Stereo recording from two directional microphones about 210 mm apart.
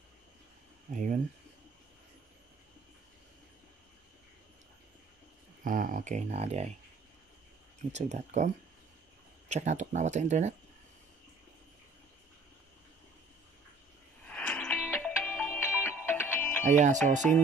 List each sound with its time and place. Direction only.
0.9 s speech: 40° right (ahead or behind)
5.6 s speech: 40° right (ahead or behind)
7.9 s speech: 35° right (ahead or behind)
9.5 s speech: 35° right (ahead or behind)
14.2 s music: 5° left (ahead or behind)
16.6 s speech: 35° right (ahead or behind)
17.2 s music: 5° left (ahead or behind)